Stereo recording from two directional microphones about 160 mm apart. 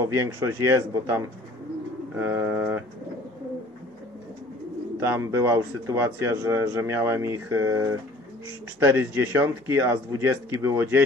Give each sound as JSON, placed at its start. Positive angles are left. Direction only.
{"t": 0.0, "sound": "a man's voice", "side_deg": -15}
{"t": 5.0, "sound": "a man's voice", "side_deg": -15}